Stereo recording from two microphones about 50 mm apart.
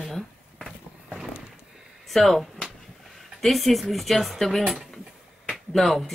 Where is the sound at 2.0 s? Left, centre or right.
Centre.